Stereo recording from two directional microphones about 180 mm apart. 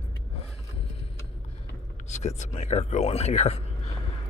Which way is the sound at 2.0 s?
40° left (ahead or behind).